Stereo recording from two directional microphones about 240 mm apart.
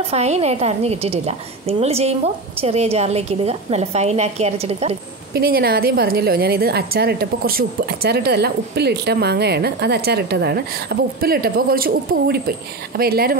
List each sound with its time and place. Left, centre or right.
0.0 s a woman's voice: right
5.3 s a woman's voice: right